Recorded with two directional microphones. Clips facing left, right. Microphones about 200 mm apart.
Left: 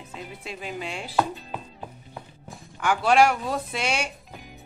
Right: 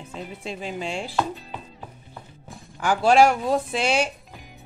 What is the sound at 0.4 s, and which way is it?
Speech, 30° right (ahead or behind).